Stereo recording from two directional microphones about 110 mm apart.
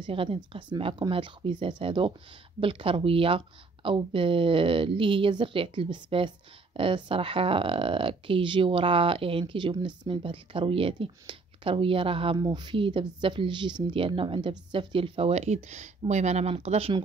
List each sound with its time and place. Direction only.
0.0 s speech: 55° right (ahead or behind)
12.4 s speech: 40° right (ahead or behind); by 16.9 s 70° right (ahead or behind)